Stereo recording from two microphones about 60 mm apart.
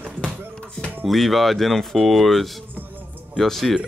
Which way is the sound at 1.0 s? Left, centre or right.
Centre.